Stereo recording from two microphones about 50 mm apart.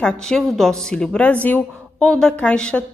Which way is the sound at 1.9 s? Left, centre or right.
Centre.